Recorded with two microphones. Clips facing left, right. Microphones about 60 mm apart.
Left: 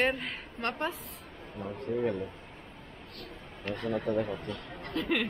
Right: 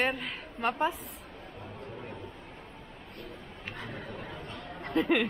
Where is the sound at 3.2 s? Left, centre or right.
Centre.